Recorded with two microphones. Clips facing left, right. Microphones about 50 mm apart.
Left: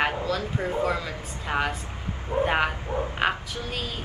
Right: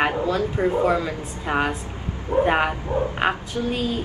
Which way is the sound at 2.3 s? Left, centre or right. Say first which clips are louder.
Right 5 dB; right.